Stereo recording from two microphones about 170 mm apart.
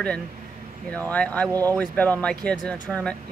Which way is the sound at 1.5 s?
20° right (ahead or behind).